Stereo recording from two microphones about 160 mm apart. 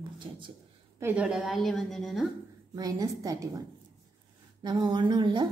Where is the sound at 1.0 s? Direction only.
10° right (ahead or behind).